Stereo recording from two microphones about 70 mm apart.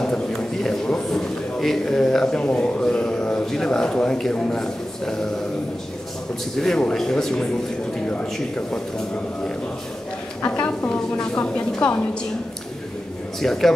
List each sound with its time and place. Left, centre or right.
0.0 s a man's voice: centre
6.5 s speech: centre
8.1 s speech: centre
10.4 s a woman's voice: left
13.4 s speech: centre